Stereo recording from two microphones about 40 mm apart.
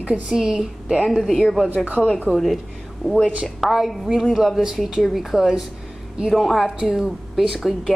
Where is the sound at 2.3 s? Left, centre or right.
Centre.